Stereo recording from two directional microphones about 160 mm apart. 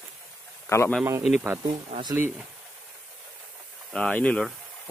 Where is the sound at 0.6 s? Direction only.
15° left (ahead or behind).